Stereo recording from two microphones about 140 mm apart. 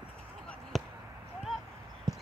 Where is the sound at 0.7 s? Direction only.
Centre (ahead or behind).